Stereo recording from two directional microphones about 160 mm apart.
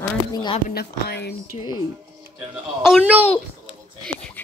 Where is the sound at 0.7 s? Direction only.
90° left.